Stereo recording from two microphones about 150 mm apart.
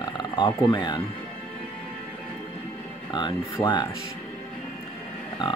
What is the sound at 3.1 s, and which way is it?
Speech, 30° left (ahead or behind).